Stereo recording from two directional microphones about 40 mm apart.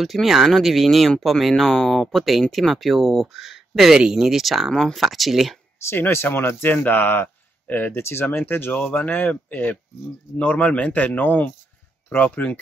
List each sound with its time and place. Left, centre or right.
0.0 s speech: centre
3.3 s speech: centre
4.6 s speech: centre
4.9 s speech: centre
5.9 s speech: left
6.2 s speech: left
6.8 s speech: left
8.0 s speech: left
8.5 s speech: left
8.8 s speech: left
12.2 s speech: left